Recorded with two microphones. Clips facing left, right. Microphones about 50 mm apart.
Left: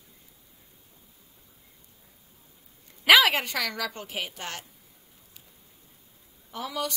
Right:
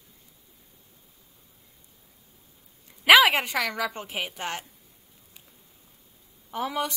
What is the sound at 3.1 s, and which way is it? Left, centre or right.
A woman's voice, centre.